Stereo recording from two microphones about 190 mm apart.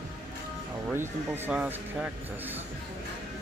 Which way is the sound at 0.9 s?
10° right (ahead or behind).